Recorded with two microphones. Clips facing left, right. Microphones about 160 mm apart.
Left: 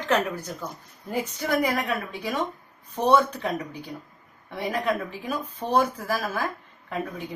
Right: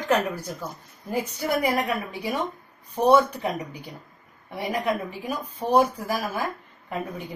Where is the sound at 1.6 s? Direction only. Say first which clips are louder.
Right 2 dB; 15° right (ahead or behind).